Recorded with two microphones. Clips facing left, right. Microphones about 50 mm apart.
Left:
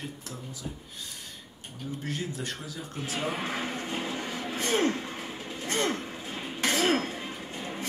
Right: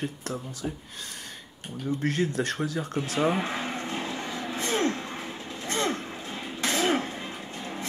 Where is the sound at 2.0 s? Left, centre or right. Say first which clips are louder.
Right 8 dB; right.